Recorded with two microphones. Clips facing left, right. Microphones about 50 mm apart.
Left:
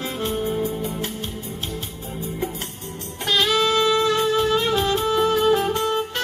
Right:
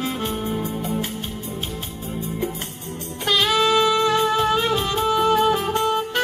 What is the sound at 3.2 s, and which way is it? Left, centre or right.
Music, centre.